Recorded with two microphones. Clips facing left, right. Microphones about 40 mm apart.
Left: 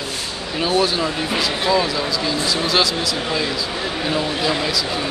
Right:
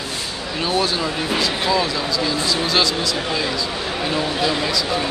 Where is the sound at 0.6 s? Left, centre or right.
Centre.